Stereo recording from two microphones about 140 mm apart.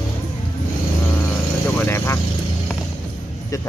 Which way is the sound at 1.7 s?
15° left (ahead or behind).